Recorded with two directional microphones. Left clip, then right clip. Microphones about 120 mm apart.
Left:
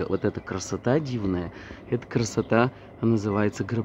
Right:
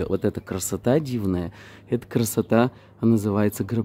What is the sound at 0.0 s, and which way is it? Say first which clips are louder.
Speech: right 2 dB; 25° right (ahead or behind).